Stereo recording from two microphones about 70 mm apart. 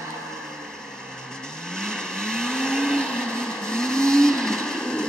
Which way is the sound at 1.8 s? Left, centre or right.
Centre.